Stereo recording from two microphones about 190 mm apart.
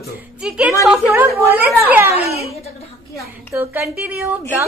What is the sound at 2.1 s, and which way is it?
Speech, 35° left (ahead or behind).